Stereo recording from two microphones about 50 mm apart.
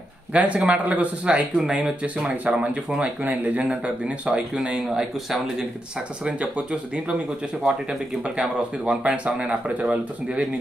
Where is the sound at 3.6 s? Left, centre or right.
Right.